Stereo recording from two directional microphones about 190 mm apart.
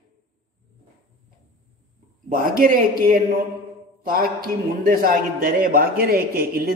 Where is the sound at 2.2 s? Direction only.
45° right (ahead or behind).